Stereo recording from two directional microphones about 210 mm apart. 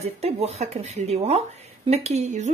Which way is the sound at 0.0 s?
30° right (ahead or behind).